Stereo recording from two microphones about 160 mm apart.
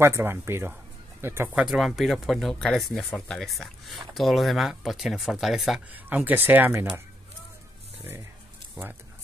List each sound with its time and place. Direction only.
0.0 s speech: 15° right (ahead or behind)
8.0 s speech: 15° right (ahead or behind)